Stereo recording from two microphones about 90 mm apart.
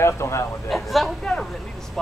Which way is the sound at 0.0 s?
30° left (ahead or behind).